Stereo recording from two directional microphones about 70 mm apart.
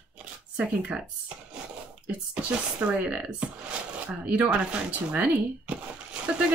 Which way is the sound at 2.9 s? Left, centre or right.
Centre.